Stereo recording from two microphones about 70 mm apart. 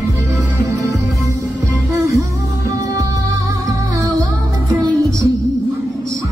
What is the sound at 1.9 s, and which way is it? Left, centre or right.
Music, right.